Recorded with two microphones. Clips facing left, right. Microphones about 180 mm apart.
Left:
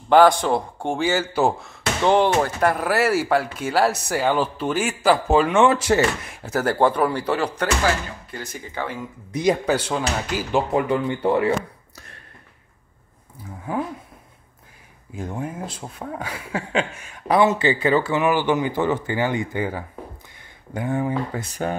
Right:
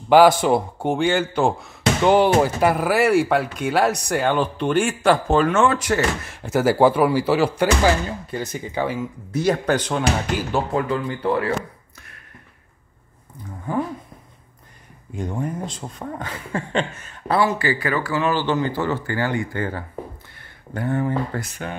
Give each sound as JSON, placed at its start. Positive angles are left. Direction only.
{"t": 0.1, "sound": "speech", "side_deg": -5}
{"t": 6.3, "sound": "speech", "side_deg": 0}
{"t": 7.8, "sound": "speech", "side_deg": -20}
{"t": 9.3, "sound": "speech", "side_deg": 15}
{"t": 10.5, "sound": "speech", "side_deg": 20}
{"t": 13.4, "sound": "speech", "side_deg": 5}
{"t": 15.1, "sound": "speech", "side_deg": 5}
{"t": 18.2, "sound": "speech", "side_deg": 15}